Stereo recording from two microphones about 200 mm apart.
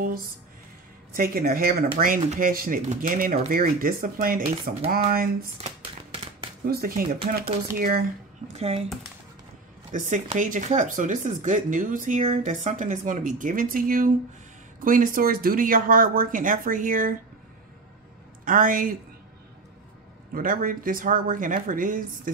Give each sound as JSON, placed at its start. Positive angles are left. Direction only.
{"t": 1.1, "sound": "speech", "side_deg": -45}
{"t": 6.6, "sound": "speech", "side_deg": -50}
{"t": 8.5, "sound": "speech", "side_deg": -30}
{"t": 9.9, "sound": "speech", "side_deg": -40}
{"t": 18.4, "sound": "speech", "side_deg": -45}
{"t": 20.3, "sound": "speech", "side_deg": -45}